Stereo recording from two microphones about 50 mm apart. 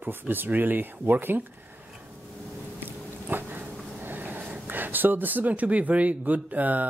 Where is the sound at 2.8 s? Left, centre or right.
Right.